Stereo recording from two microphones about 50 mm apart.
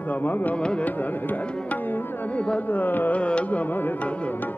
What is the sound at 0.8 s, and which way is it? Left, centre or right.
Carnatic music, left.